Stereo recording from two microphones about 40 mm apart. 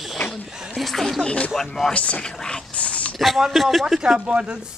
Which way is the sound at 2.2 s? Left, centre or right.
Centre.